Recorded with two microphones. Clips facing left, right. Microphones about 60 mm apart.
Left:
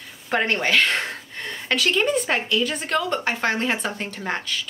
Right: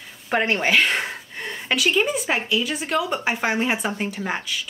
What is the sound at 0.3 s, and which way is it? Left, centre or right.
A woman's voice, centre.